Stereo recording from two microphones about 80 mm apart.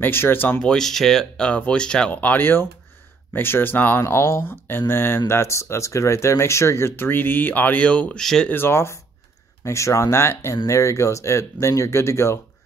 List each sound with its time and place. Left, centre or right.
0.0 s speech: left
0.6 s speech: centre
8.2 s speech: centre
8.5 s speech: left